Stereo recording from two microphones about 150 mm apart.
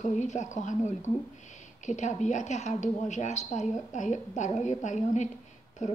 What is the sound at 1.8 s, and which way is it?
Speech, 50° left (ahead or behind).